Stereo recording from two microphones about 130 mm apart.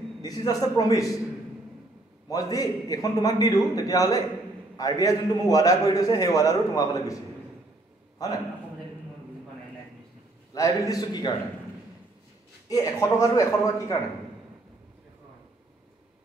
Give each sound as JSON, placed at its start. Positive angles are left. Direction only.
{"t": 0.2, "sound": "a man's voice", "side_deg": 30}
{"t": 2.2, "sound": "a man's voice", "side_deg": 30}
{"t": 8.2, "sound": "a man's voice", "side_deg": 30}
{"t": 10.5, "sound": "a man's voice", "side_deg": 25}
{"t": 12.6, "sound": "a man's voice", "side_deg": 25}